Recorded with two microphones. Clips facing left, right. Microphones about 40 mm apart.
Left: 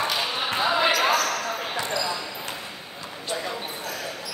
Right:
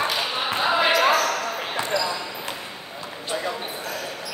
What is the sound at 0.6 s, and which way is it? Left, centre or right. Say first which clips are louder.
Basketball bounce: right 2 dB; centre.